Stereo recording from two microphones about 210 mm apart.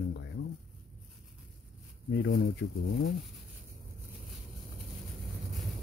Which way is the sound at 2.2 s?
55° left (ahead or behind).